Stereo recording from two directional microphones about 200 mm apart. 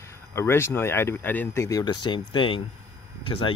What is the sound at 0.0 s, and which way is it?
Speech, 15° left (ahead or behind).